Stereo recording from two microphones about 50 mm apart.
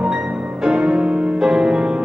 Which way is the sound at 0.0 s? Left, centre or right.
Centre.